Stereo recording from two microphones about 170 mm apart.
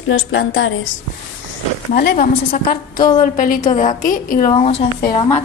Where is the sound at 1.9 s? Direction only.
65° left (ahead or behind).